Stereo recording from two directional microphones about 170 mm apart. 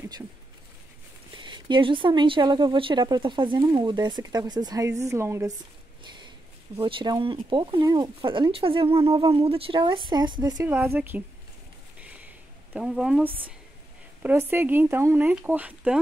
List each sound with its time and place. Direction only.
1.3 s speech: 25° right (ahead or behind)
6.8 s speech: 30° right (ahead or behind); by 11.2 s 10° right (ahead or behind)
12.0 s a sound: 5° right (ahead or behind)
12.7 s speech: 5° right (ahead or behind)